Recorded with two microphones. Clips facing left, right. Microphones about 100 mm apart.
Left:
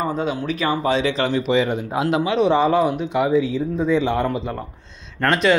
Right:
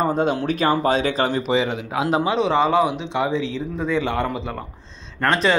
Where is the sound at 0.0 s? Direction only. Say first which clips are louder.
Right 3 dB; 50° right (ahead or behind); by 2.4 s 35° right (ahead or behind).